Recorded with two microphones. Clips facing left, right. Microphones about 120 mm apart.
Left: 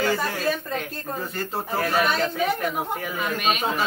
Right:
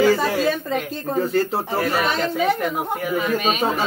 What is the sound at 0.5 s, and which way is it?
Speech, 20° right (ahead or behind).